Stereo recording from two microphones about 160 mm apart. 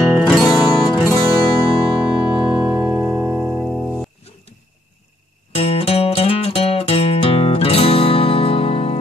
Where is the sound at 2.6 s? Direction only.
10° right (ahead or behind).